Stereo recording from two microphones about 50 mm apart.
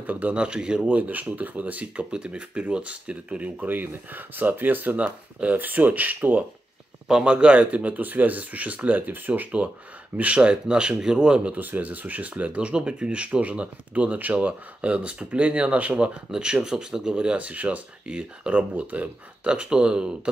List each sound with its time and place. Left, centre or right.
0.0 s speech: right
0.3 s speech: centre
0.8 s speech: right
3.6 s speech: right
7.1 s speech: centre
11.6 s speech: right
16.3 s speech: centre